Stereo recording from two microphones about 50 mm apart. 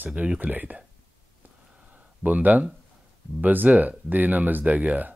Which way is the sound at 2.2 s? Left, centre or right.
Right.